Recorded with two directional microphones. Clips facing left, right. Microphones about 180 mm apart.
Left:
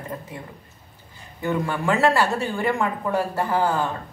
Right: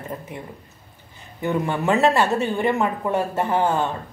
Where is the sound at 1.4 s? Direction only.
20° right (ahead or behind).